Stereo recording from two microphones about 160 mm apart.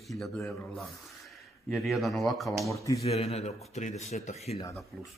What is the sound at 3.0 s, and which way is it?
Speech, 40° left (ahead or behind).